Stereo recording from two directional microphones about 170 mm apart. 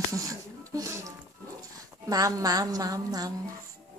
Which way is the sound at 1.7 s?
20° right (ahead or behind).